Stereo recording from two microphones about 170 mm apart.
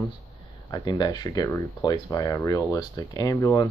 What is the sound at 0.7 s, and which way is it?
Speech, 20° left (ahead or behind).